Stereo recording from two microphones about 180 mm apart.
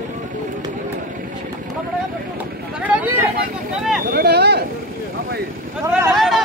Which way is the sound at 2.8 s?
5° right (ahead or behind).